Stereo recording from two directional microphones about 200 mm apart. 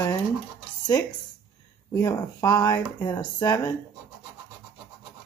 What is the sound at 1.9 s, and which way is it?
Speech, 15° left (ahead or behind).